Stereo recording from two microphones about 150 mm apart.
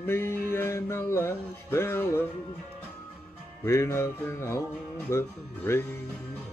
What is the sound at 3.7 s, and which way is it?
Music, 20° left (ahead or behind).